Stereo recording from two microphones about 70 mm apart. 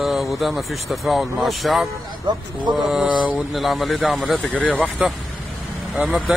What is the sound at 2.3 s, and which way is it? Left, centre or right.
Speech, right.